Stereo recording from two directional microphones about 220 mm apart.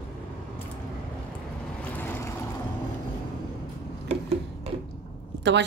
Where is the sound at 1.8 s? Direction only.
10° left (ahead or behind).